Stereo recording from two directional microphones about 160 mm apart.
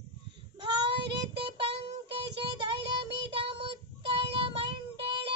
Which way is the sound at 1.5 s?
35° right (ahead or behind).